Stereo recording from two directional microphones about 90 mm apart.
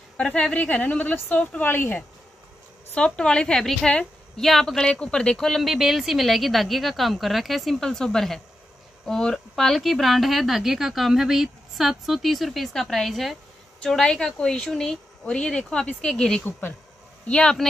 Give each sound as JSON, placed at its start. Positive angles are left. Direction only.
{"t": 0.2, "sound": "speech", "side_deg": 15}
{"t": 2.9, "sound": "a woman's voice", "side_deg": 10}